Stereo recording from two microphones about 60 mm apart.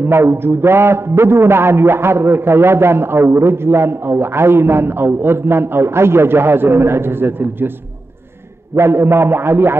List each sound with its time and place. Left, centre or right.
0.0 s a man's voice: right
8.7 s a man's voice: right